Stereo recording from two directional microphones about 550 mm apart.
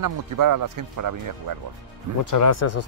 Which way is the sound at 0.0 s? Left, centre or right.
Right.